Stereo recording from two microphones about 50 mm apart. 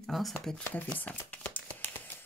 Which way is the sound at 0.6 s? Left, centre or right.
Left.